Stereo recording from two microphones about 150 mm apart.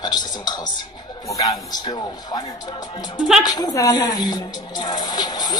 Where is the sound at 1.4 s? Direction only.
25° left (ahead or behind).